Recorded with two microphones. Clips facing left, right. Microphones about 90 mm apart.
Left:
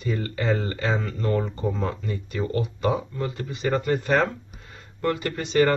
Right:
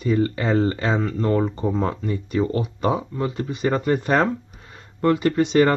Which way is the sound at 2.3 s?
25° right (ahead or behind).